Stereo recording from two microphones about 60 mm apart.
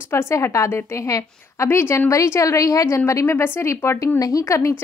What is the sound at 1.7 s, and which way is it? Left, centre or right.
Speech, left.